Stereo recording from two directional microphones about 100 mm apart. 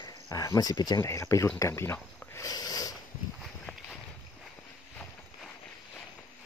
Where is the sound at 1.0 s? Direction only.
30° left (ahead or behind).